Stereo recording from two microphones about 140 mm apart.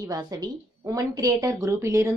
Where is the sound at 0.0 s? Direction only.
25° right (ahead or behind).